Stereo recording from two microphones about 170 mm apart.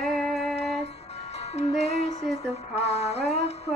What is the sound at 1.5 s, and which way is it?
Music, 40° left (ahead or behind).